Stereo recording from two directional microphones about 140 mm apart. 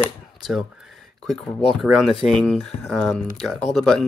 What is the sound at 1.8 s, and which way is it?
Speech, 5° right (ahead or behind).